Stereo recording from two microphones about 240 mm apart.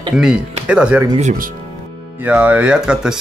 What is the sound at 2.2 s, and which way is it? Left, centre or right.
Speech, centre.